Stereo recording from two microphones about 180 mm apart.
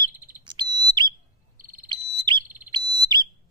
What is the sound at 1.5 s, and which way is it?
Frog, 50° right (ahead or behind).